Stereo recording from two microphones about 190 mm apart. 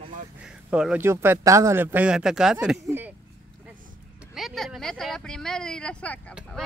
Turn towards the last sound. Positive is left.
turn(degrees=0)  # may be behind; listen again after turning